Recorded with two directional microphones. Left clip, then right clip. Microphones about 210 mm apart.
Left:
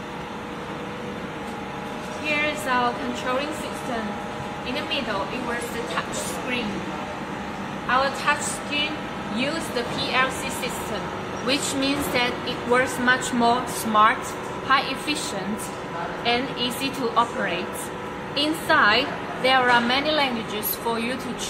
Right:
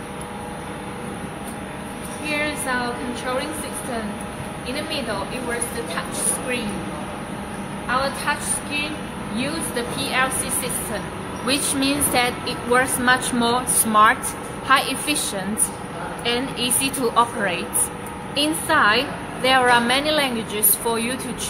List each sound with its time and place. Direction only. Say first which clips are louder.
8.3 s a woman's voice: left 2 dB; 5° right (ahead or behind)
10.0 s a woman's voice: right 1 dB; 20° right (ahead or behind); by 15.1 s 35° right (ahead or behind)
16.3 s a woman's voice: right 1 dB; 35° right (ahead or behind)